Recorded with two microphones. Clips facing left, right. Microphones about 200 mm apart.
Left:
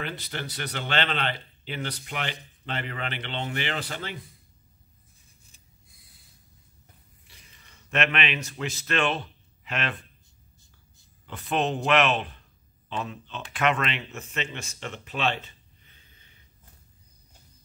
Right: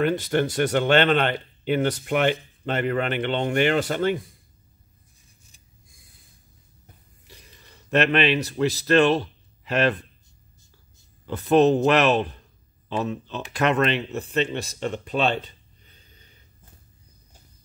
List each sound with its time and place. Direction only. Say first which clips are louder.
0.0 s speech: right 13 dB; 45° right (ahead or behind)
7.2 s speech: right 9 dB; 40° right (ahead or behind)
11.2 s a man's voice: right 10 dB; 40° right (ahead or behind)